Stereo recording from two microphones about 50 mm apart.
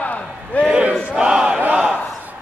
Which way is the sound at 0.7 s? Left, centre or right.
Right.